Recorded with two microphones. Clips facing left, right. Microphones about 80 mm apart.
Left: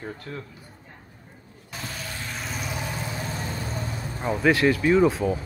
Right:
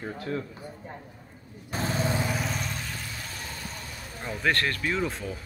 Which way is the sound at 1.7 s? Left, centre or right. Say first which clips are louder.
Right 8 dB; right.